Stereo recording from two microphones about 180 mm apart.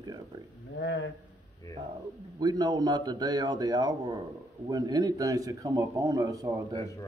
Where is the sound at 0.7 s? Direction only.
80° left.